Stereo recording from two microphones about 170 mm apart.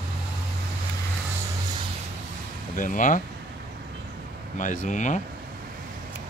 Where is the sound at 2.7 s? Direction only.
50° left (ahead or behind).